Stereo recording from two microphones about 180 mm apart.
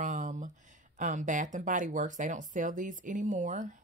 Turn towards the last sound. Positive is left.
turn(degrees=-45)  # may be behind; listen again after turning